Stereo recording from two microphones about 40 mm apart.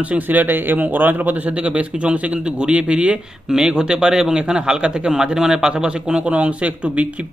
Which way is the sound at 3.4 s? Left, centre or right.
Centre.